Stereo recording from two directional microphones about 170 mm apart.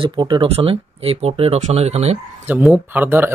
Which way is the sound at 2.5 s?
10° right (ahead or behind).